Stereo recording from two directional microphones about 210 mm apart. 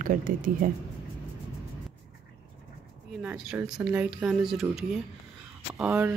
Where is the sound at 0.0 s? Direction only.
40° right (ahead or behind).